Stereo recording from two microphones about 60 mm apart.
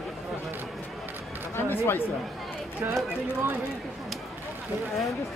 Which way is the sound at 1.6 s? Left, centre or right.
Left.